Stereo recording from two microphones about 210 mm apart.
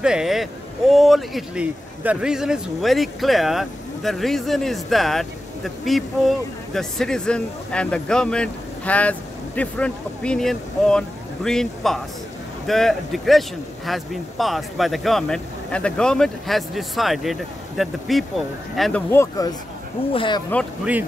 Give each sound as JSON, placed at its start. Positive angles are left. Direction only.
{"t": 0.0, "sound": "speech", "side_deg": -5}